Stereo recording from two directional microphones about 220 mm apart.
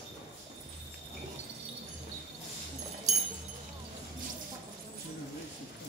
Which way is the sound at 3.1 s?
30° right (ahead or behind).